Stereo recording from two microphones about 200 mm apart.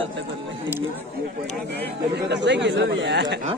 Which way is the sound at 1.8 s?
55° right (ahead or behind).